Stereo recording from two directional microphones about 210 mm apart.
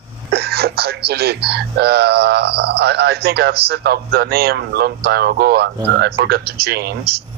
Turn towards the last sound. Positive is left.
turn(degrees=-50)  # may be behind; listen again after turning